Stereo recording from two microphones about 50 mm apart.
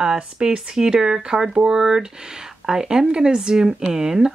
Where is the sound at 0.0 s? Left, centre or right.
Centre.